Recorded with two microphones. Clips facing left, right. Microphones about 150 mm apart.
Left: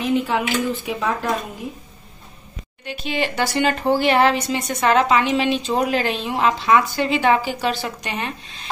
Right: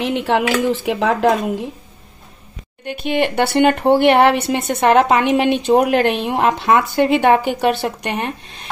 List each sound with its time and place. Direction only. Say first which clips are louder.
0.0 s speech: right 3 dB; 80° right
2.8 s speech: right 6 dB; 55° right (ahead or behind)